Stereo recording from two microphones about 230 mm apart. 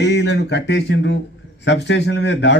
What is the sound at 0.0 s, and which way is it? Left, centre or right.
Speech, left.